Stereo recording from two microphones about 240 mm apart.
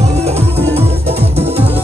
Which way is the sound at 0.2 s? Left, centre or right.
Right.